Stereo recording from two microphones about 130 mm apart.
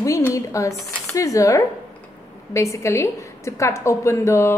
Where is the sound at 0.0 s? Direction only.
25° left (ahead or behind).